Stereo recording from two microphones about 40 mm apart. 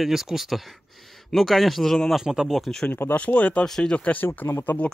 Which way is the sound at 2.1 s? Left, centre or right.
Centre.